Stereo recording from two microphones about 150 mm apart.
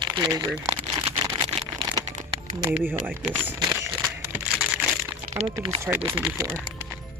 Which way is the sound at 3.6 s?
25° right (ahead or behind).